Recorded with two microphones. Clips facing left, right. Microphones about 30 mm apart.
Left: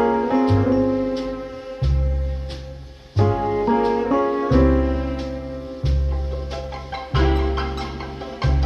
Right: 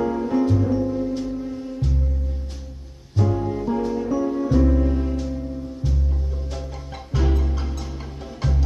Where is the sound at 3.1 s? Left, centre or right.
Left.